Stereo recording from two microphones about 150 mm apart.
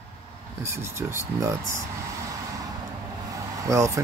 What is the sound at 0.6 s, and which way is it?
Speech, 15° right (ahead or behind).